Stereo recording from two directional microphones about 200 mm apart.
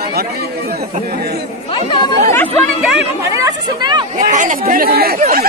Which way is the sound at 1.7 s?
25° left (ahead or behind).